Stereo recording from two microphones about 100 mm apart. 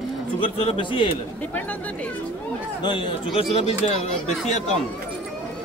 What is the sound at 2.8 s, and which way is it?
Speech, 50° left (ahead or behind).